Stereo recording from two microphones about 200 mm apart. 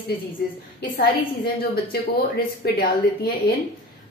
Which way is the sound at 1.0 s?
50° left (ahead or behind).